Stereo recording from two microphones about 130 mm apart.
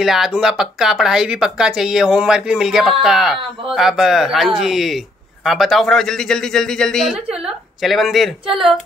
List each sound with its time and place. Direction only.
0.0 s speech: 5° right (ahead or behind)